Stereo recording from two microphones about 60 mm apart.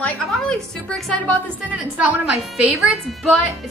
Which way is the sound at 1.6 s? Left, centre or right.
Right.